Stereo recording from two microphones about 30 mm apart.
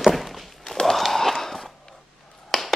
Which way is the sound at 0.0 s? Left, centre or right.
Centre.